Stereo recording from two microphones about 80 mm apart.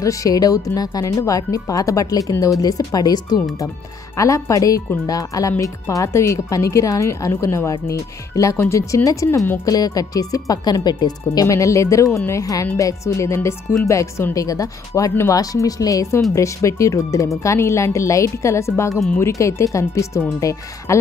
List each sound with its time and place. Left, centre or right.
0.0 s speech: left
4.2 s speech: left
11.4 s speech: left